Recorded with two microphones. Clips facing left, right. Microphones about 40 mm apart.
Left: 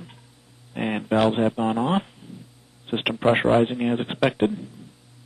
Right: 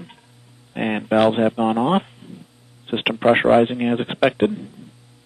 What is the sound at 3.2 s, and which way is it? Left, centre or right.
A man's voice, centre.